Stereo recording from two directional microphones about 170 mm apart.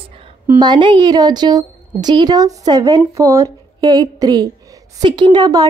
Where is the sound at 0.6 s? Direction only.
25° right (ahead or behind).